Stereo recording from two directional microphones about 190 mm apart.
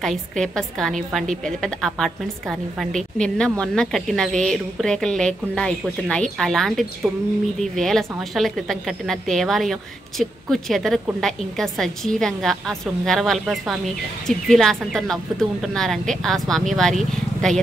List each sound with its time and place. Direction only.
0.0 s a woman's voice: centre (ahead or behind)